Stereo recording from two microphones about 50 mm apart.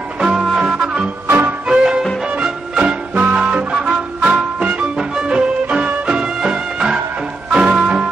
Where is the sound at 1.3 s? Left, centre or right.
Right.